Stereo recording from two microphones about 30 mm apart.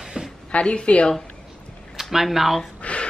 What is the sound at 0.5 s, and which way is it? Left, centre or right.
Speech, left.